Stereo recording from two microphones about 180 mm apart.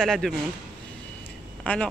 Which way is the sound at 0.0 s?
5° left (ahead or behind).